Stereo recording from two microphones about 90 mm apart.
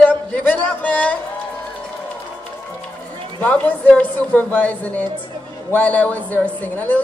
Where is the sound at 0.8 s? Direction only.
15° left (ahead or behind).